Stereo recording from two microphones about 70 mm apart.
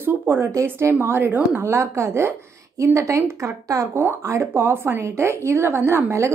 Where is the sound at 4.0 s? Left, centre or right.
Right.